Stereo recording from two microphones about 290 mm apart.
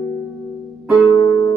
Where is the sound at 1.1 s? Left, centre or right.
Centre.